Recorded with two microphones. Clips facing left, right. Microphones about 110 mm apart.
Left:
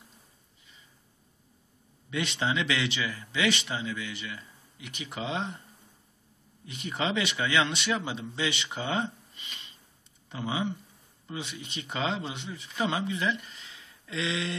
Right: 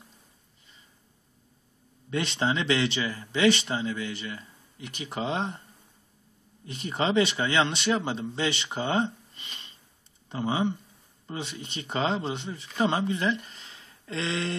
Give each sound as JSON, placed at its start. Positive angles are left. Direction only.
{"t": 2.0, "sound": "speech", "side_deg": -40}
{"t": 6.6, "sound": "speech", "side_deg": -35}